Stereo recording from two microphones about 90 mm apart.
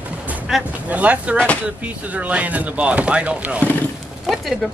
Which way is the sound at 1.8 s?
15° right (ahead or behind).